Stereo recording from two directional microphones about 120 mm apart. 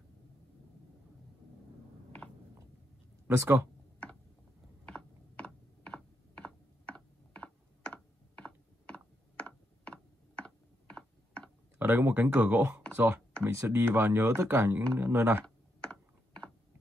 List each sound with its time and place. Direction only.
3.3 s speech: 20° right (ahead or behind)
4.8 s mechanisms: 10° left (ahead or behind)
11.8 s speech: 15° right (ahead or behind)
15.4 s computer keyboard: 10° left (ahead or behind)